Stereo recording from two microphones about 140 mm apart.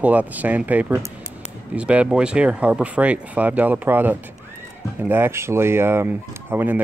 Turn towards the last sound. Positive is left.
turn(degrees=-15)  # may be behind; listen again after turning